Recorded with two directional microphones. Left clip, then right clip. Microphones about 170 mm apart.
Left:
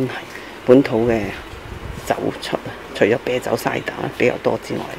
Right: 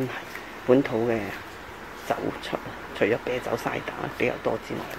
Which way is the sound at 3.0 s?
35° left (ahead or behind).